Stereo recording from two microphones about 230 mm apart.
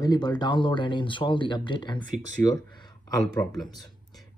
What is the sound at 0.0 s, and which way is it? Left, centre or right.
Speech, centre.